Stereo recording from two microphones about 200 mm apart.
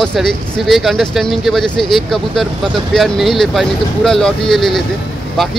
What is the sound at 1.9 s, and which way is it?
Speech, centre (ahead or behind).